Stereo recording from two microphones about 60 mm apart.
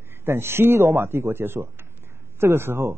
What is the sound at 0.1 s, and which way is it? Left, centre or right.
A man's voice, right.